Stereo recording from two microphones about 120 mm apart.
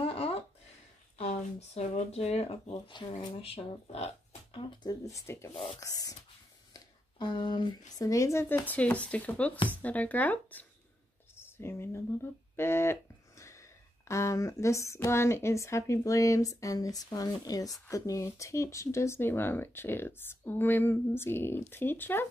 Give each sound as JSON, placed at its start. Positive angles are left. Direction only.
{"t": 1.1, "sound": "speech", "side_deg": 65}
{"t": 3.2, "sound": "speech", "side_deg": 45}
{"t": 4.6, "sound": "speech", "side_deg": 45}
{"t": 5.0, "sound": "speech", "side_deg": 25}
{"t": 6.7, "sound": "speech", "side_deg": 40}
{"t": 8.1, "sound": "speech", "side_deg": 25}